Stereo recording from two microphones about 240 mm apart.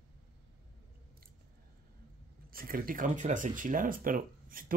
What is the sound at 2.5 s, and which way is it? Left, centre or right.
Speech, right.